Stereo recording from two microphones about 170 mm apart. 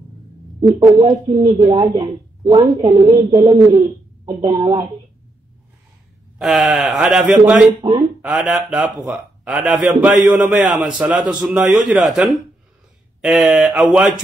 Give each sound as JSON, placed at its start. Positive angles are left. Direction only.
{"t": 0.6, "sound": "speech", "side_deg": -25}
{"t": 6.3, "sound": "speech", "side_deg": 0}
{"t": 7.8, "sound": "speech", "side_deg": -30}
{"t": 8.2, "sound": "a man's voice", "side_deg": -5}